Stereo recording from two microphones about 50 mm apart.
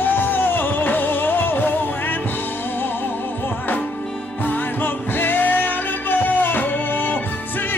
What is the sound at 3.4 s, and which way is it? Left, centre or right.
Music, left.